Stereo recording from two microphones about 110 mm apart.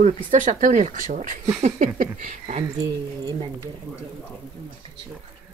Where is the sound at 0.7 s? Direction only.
90° right.